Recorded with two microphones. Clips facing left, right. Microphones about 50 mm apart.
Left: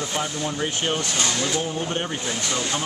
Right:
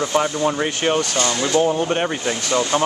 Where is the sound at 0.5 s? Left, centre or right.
Right.